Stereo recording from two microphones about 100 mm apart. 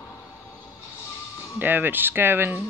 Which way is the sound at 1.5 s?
20° right (ahead or behind).